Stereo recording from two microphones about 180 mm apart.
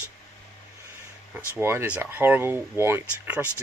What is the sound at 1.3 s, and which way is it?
Speech, 10° right (ahead or behind).